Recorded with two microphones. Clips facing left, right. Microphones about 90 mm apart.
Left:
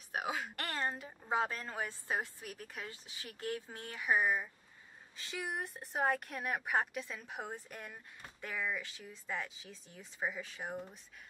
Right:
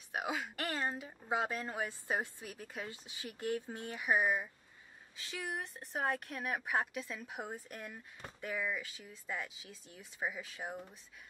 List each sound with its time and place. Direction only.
0.1 s speech: centre (ahead or behind)
5.1 s speech: centre (ahead or behind)